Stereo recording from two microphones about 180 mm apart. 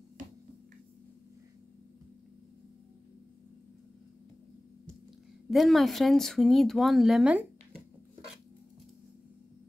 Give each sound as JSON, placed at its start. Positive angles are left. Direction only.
{"t": 5.5, "sound": "speech", "side_deg": 0}